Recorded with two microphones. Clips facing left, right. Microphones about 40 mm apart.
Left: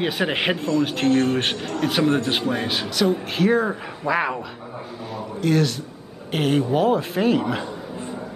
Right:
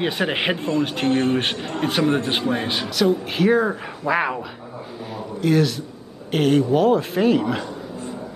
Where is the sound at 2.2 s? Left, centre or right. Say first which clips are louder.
Right 1 dB; centre.